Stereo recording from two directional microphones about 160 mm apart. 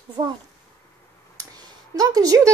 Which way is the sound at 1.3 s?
25° right (ahead or behind).